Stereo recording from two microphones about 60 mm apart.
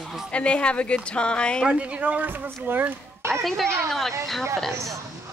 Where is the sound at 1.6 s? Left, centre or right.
Centre; by 3.3 s right.